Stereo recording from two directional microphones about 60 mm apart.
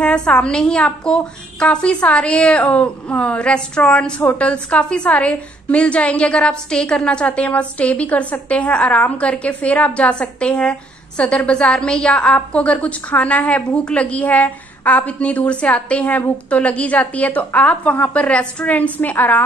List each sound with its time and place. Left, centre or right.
0.0 s a woman's voice: centre